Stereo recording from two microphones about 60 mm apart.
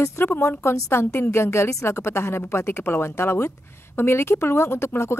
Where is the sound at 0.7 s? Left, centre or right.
Left.